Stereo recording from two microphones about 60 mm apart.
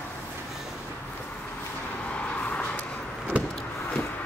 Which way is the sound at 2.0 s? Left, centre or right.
Left.